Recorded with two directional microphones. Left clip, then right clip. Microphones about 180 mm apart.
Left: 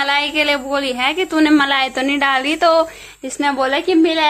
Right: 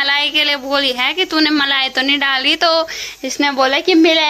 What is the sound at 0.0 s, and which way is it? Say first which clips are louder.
A woman's voice: right 2 dB; 5° left (ahead or behind).